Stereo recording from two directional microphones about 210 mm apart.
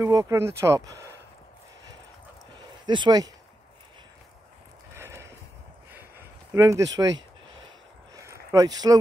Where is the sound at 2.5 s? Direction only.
20° right (ahead or behind).